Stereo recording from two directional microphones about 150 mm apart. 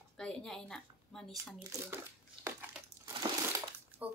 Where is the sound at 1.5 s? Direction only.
15° right (ahead or behind).